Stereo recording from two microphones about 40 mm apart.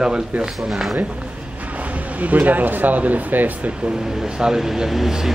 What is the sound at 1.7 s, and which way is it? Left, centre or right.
Speech, right.